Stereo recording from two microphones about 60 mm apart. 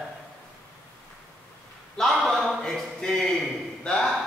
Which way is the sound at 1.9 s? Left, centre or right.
Centre.